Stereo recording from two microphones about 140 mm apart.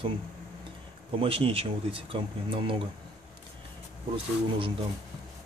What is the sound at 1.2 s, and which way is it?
Speech, 40° right (ahead or behind).